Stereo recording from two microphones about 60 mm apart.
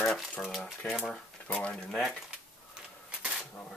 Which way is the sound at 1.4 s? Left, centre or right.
Left.